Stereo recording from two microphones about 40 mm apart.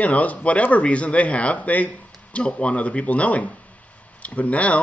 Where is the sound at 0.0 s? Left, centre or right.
Left.